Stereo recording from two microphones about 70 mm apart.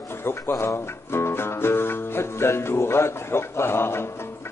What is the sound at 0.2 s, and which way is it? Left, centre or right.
Speech, left.